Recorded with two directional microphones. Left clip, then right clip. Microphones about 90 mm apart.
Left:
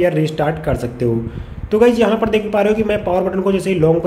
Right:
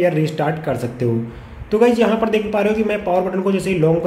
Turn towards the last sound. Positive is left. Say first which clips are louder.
# left 2 dB
turn(degrees=25)  # may be behind; listen again after turning